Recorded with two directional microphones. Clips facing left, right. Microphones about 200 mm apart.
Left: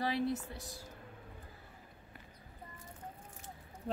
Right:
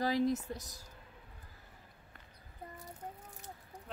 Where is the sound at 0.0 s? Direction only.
40° right (ahead or behind).